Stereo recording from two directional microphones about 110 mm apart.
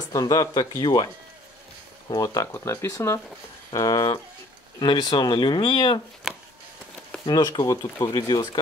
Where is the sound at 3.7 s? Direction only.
35° left (ahead or behind).